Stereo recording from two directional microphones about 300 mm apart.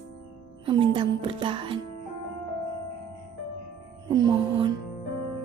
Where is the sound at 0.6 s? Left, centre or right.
Centre.